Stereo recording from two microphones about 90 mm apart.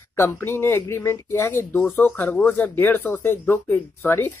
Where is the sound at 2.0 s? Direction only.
15° left (ahead or behind).